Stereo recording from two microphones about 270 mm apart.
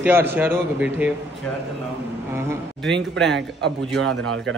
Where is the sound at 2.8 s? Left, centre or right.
Centre.